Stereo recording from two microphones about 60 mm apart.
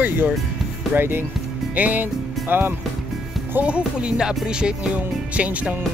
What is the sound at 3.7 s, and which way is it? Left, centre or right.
Music, centre.